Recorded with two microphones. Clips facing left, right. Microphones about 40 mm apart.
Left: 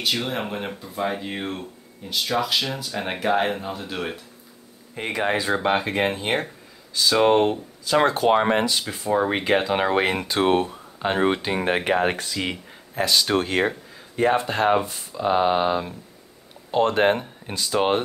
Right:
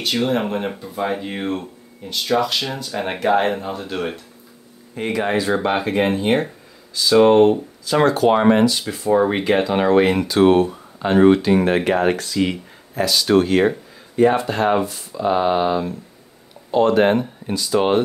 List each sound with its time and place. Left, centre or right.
0.0 s speech: centre
4.9 s speech: left
5.5 s speech: centre
8.0 s speech: left
8.8 s speech: centre
10.2 s speech: left
11.0 s speech: centre
12.9 s speech: left
13.6 s a sound: centre
14.3 s speech: left
16.7 s speech: left
17.7 s speech: left